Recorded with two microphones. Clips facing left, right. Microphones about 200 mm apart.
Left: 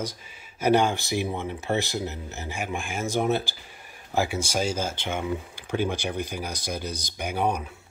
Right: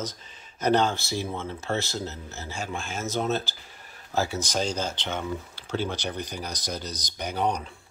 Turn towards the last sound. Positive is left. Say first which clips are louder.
# left 1 dB
turn(degrees=10)  # may be behind; listen again after turning